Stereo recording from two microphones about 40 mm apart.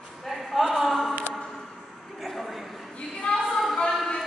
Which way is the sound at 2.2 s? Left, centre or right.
Centre.